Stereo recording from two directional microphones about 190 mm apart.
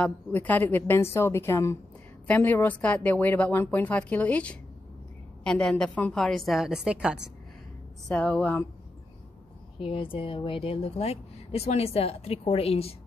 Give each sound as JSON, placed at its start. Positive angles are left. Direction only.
{"t": 0.0, "sound": "a woman's voice", "side_deg": 10}
{"t": 8.1, "sound": "a woman's voice", "side_deg": 5}
{"t": 9.8, "sound": "speech", "side_deg": 30}